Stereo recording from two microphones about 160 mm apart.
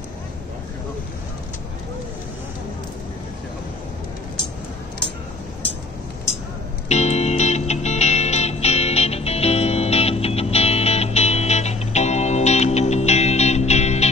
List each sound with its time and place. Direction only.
6.9 s music: 45° left (ahead or behind)